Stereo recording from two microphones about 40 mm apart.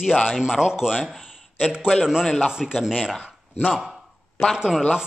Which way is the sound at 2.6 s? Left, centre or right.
Centre.